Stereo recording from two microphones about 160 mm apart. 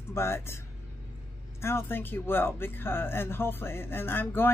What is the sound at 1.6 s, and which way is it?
Speech, 15° left (ahead or behind).